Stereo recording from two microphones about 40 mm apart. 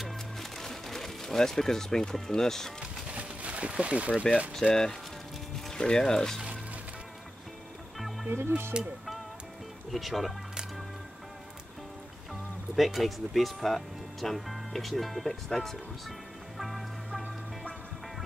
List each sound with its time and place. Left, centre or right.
0.0 s music: centre
2.1 s speech: centre
3.1 s a sound: right
4.1 s speech: left
4.6 s speech: right
5.7 s speech: centre
8.4 s speech: right
9.9 s speech: centre
12.7 s speech: centre
16.5 s music: centre